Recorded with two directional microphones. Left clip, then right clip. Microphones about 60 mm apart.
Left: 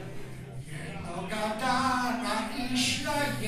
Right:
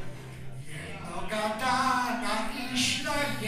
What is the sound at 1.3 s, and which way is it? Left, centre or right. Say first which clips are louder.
Music: right 1 dB; centre.